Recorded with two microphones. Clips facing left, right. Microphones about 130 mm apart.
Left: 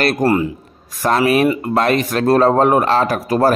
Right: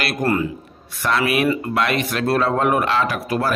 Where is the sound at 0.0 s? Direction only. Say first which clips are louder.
Left 5 dB; 40° left (ahead or behind).